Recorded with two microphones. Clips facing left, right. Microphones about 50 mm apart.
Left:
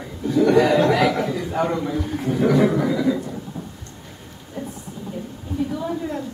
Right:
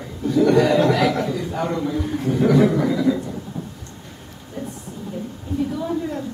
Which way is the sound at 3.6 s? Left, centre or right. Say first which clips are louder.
Right 2 dB; right.